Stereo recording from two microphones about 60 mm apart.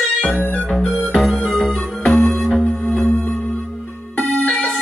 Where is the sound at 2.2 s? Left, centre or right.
Centre.